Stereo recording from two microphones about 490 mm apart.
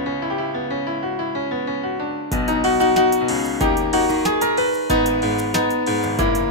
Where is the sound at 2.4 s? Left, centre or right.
Centre.